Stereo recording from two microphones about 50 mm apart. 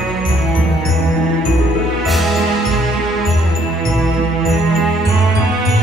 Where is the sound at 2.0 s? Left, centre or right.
Centre.